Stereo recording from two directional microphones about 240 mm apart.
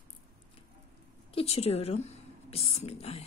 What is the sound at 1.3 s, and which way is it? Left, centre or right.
Speech, left.